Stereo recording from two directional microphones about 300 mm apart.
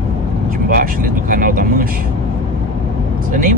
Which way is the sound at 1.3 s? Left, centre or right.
Right.